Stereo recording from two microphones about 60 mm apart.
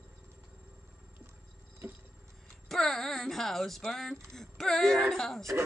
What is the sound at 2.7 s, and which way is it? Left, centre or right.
Speech, centre.